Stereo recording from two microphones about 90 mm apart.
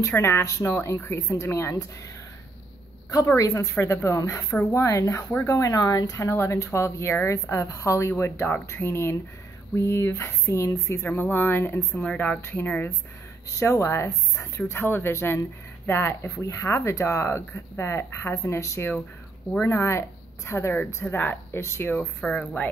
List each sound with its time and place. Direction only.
0.1 s a woman's voice: 30° left (ahead or behind)
3.3 s a woman's voice: 35° left (ahead or behind)
11.1 s speech: 20° left (ahead or behind)
12.1 s speech: 15° left (ahead or behind)
12.4 s speech: 25° left (ahead or behind)
13.5 s a woman's voice: 30° left (ahead or behind)
21.9 s speech: 15° left (ahead or behind)